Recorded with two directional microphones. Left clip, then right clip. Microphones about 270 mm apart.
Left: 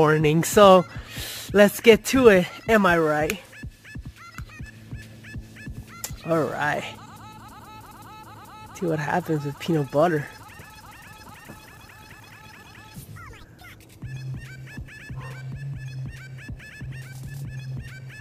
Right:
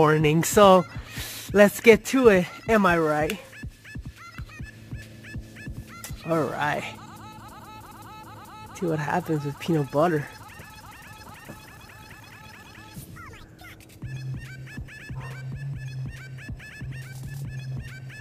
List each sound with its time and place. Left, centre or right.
0.0 s speech: centre
5.3 s fowl: centre
8.7 s speech: centre
14.0 s music: centre